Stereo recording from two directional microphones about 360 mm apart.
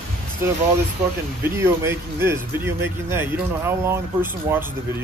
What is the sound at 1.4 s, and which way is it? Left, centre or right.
Speech, centre.